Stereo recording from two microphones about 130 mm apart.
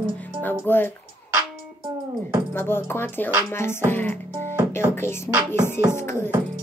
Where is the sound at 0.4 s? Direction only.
15° left (ahead or behind).